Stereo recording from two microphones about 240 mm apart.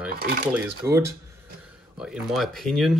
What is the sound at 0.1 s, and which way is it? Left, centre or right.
Speech, right.